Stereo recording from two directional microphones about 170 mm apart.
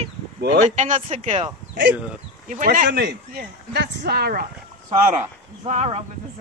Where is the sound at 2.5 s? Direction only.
50° right (ahead or behind).